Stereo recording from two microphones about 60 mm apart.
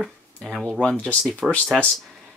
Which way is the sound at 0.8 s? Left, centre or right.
Left.